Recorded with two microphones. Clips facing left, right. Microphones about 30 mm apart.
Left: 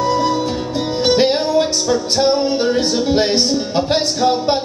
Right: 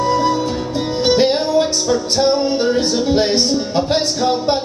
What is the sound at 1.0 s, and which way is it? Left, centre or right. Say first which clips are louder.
Music: even; left.